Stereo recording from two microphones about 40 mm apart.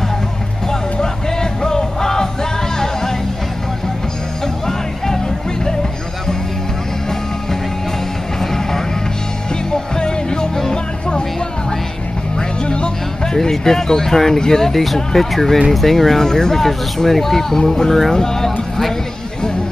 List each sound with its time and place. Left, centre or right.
0.7 s music: centre
4.6 s music: centre
8.4 s music: centre
12.4 s music: left; by 15.0 s centre
15.0 s speech: centre